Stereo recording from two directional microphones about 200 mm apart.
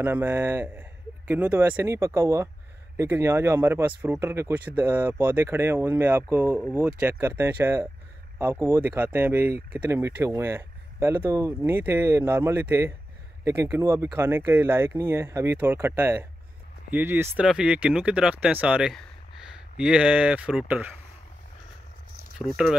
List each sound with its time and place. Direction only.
0.0 s speech: 10° right (ahead or behind)
22.4 s speech: 15° left (ahead or behind)